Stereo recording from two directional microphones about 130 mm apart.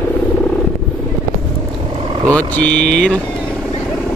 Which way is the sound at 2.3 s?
10° left (ahead or behind).